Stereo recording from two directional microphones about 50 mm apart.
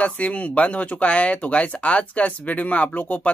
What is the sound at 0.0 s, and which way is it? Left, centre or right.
Speech, left.